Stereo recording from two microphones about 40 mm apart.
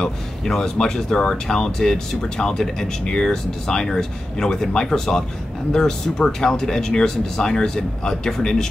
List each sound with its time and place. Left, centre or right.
0.5 s speech: centre